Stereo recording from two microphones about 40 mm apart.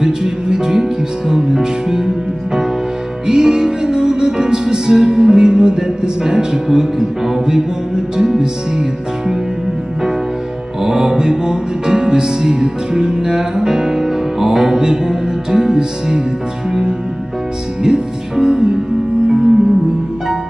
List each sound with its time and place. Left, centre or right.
0.0 s music: centre
10.8 s music: centre
17.8 s music: centre